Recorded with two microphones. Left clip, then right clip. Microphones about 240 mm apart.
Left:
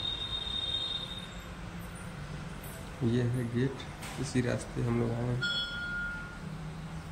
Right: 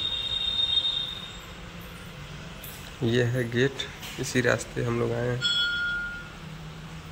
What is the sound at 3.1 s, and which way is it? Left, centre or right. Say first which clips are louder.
Speech: right 8 dB; centre.